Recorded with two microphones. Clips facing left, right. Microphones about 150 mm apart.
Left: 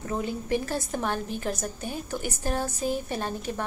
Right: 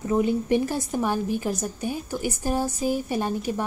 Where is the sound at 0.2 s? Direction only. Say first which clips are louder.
Right 6 dB; 20° right (ahead or behind).